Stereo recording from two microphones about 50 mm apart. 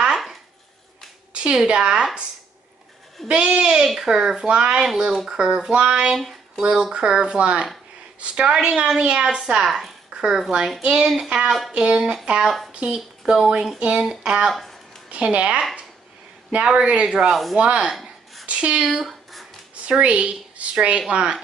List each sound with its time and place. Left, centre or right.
0.1 s a sound: centre
1.3 s a sound: right
1.7 s a woman's voice: centre
3.3 s a woman's voice: right
4.5 s speech: right
4.8 s a woman's voice: centre
10.0 s a sound: centre
10.8 s speech: right
12.4 s a woman's voice: centre
13.7 s a woman's voice: right
14.5 s speech: centre
15.0 s a woman's voice: right
18.9 s a sound: centre
19.7 s a woman's voice: right